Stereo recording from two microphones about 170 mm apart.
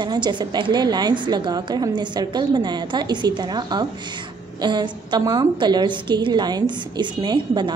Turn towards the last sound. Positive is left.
turn(degrees=-25)  # may be behind; listen again after turning